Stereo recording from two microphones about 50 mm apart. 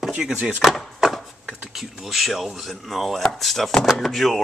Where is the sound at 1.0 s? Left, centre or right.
Centre.